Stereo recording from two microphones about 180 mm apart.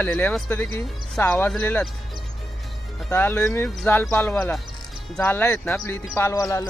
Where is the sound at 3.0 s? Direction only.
10° left (ahead or behind).